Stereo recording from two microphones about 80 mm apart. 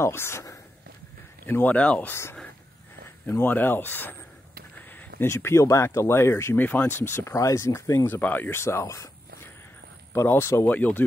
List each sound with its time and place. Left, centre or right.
0.0 s speech: left
1.4 s speech: left
3.3 s speech: left
4.7 s a sound: left
5.3 s speech: left
8.1 s speech: left
10.7 s speech: centre